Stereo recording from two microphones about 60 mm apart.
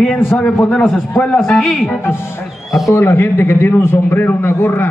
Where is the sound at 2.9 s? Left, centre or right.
Left.